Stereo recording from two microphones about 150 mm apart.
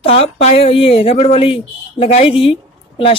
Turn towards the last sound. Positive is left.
turn(degrees=40)  # may be behind; listen again after turning